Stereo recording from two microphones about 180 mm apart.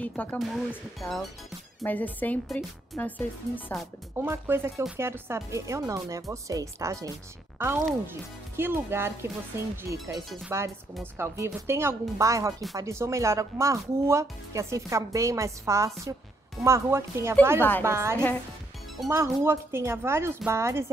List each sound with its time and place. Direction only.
0.0 s speech: 10° left (ahead or behind)
4.2 s speech: 15° right (ahead or behind)
17.6 s speech: 10° left (ahead or behind)
17.8 s speech: 15° right (ahead or behind)